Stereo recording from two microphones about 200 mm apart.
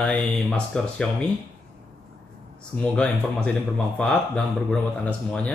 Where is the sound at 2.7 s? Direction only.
5° left (ahead or behind).